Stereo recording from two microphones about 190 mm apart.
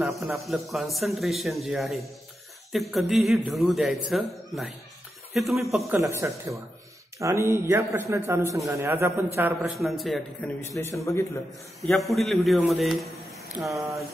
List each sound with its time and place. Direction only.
0.0 s speech: centre (ahead or behind)
5.9 s a man's voice: 15° right (ahead or behind)
9.8 s speech: centre (ahead or behind)
10.8 s a man's voice: 15° left (ahead or behind)
12.1 s speech: centre (ahead or behind)
13.5 s a sound: centre (ahead or behind)